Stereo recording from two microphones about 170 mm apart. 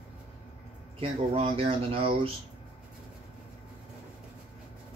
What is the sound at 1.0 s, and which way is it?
Speech, 35° right (ahead or behind).